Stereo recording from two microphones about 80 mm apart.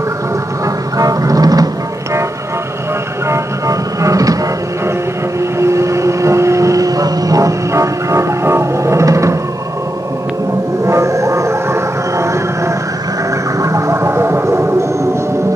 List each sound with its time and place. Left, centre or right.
0.9 s music: right
3.3 s music: right
5.6 s vehicle: right
10.9 s a sound: right